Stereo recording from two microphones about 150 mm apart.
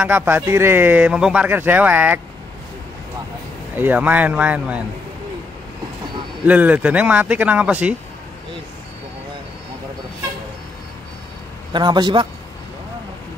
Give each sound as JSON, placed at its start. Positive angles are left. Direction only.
{"t": 0.0, "sound": "speech", "side_deg": -10}
{"t": 3.7, "sound": "speech", "side_deg": -10}
{"t": 6.4, "sound": "speech", "side_deg": -10}
{"t": 11.7, "sound": "a man's voice", "side_deg": -30}